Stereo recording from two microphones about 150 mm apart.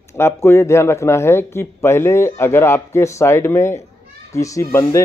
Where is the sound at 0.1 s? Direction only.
15° left (ahead or behind).